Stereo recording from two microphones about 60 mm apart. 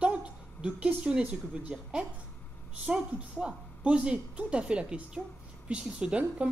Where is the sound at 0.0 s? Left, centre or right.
Centre.